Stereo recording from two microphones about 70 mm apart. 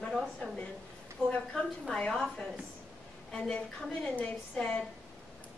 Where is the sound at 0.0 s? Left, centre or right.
Centre.